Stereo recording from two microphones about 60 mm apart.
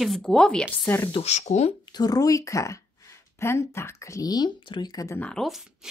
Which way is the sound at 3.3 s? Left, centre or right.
Left.